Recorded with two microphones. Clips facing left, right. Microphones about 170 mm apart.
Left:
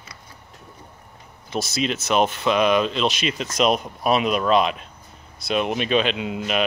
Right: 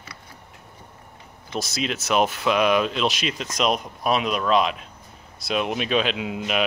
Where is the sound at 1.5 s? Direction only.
Centre (ahead or behind).